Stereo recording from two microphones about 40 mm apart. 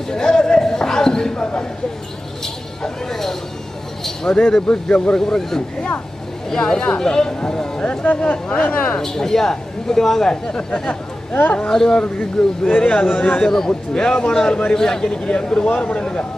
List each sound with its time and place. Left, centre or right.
0.1 s speech: centre
2.4 s speech: centre
7.8 s speech: left
9.0 s speech: centre; by 16.3 s left